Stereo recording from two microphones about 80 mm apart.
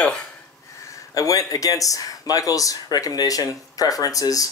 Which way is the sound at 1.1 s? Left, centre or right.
Left.